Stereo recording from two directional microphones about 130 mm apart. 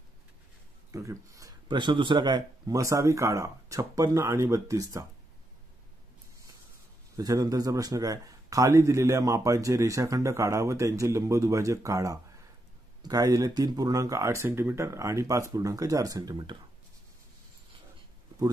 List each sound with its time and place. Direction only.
0.9 s a sound: 25° right (ahead or behind)
1.8 s a man's voice: 40° right (ahead or behind)
7.2 s a man's voice: 30° right (ahead or behind)